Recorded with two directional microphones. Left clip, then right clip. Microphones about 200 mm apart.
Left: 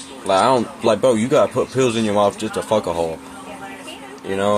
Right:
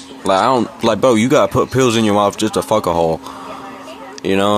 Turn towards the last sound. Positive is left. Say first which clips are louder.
# right 5 dB
turn(degrees=-50)  # may be behind; listen again after turning